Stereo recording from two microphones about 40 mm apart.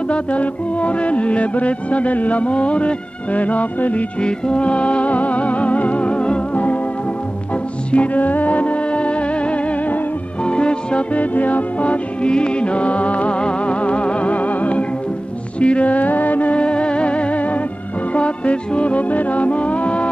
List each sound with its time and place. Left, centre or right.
0.1 s music: left
4.2 s music: left
7.9 s music: left
11.1 s music: left